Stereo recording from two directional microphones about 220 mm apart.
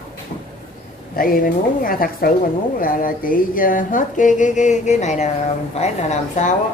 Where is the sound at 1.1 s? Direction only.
40° left (ahead or behind).